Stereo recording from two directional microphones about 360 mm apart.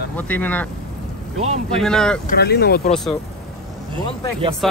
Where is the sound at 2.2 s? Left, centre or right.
Left.